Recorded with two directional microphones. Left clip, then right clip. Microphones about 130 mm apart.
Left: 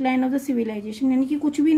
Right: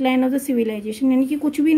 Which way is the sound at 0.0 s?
20° right (ahead or behind).